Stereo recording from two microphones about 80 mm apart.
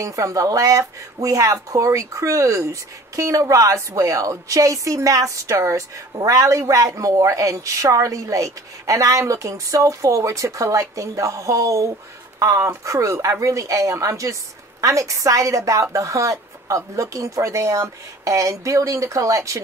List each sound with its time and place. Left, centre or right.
0.0 s speech: right